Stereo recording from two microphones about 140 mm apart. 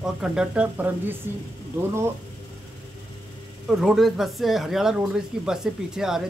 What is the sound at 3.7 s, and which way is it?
Speech, centre (ahead or behind).